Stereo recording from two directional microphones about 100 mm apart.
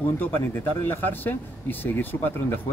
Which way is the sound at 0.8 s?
20° left (ahead or behind).